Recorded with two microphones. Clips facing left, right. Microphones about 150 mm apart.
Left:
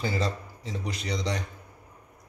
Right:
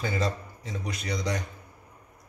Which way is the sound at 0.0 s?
30° left (ahead or behind).